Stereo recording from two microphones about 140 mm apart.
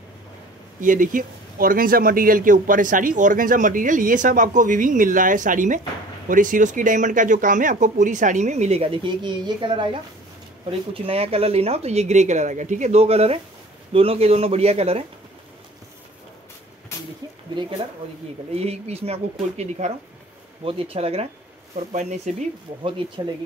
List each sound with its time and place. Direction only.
0.7 s a man's voice: 70° right (ahead or behind); by 15.0 s 45° right (ahead or behind)
18.5 s speech: 50° right (ahead or behind)